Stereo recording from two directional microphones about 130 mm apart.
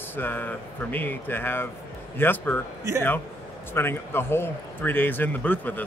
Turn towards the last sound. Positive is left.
turn(degrees=15)  # may be behind; listen again after turning